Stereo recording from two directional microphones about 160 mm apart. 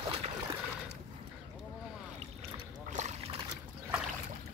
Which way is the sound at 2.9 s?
45° right (ahead or behind).